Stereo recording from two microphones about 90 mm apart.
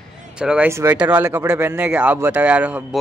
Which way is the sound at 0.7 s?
30° right (ahead or behind).